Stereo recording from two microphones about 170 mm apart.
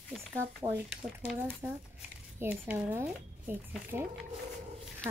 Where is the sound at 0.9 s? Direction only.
5° right (ahead or behind).